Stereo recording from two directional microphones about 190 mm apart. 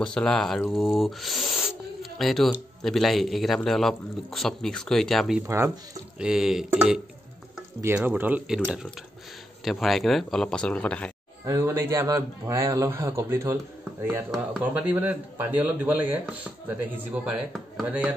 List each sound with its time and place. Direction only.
0.0 s a man's voice: 5° left (ahead or behind)
9.7 s speech: centre (ahead or behind)
11.4 s a man's voice: 15° right (ahead or behind)